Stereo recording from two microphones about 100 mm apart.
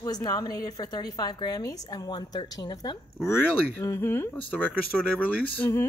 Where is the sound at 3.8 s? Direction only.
25° left (ahead or behind).